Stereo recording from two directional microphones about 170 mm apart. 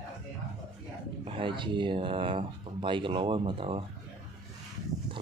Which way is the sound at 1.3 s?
30° right (ahead or behind).